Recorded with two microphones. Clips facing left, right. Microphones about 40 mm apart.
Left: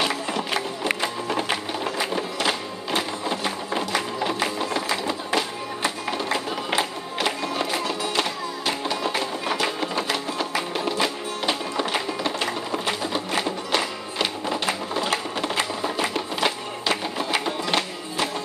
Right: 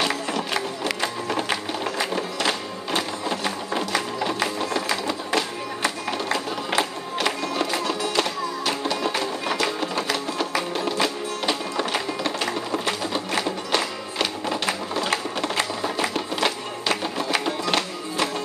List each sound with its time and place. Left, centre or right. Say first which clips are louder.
0.0 s music: even; centre
15.4 s music: even; left